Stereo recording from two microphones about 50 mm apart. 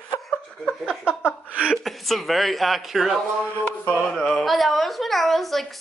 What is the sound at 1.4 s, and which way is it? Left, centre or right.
Chuckle, right.